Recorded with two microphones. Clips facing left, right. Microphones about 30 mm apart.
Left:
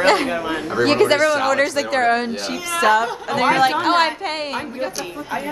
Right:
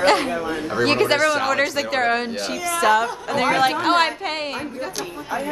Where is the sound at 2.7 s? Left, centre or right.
Centre.